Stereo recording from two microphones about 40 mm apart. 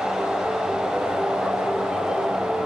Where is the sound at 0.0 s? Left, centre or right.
Centre.